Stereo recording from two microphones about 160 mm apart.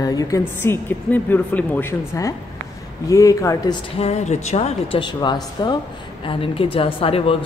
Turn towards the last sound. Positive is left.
turn(degrees=35)  # may be behind; listen again after turning